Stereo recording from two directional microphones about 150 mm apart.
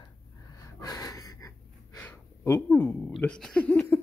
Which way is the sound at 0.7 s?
25° left (ahead or behind).